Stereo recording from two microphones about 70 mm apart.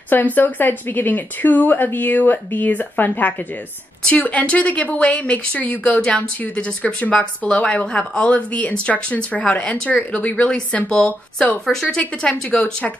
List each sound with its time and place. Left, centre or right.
0.1 s a woman's voice: left; by 12.0 s centre
12.0 s a woman's voice: centre